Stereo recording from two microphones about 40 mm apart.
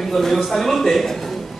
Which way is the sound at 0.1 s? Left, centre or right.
Centre.